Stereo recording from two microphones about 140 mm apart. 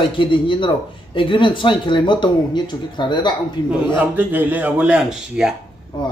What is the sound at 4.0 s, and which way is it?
A man's voice, 10° right (ahead or behind).